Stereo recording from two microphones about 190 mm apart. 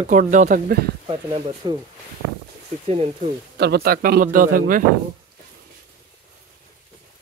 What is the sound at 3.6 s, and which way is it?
A man's voice, 55° right (ahead or behind).